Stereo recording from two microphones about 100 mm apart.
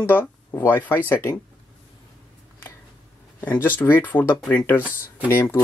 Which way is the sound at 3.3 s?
20° left (ahead or behind).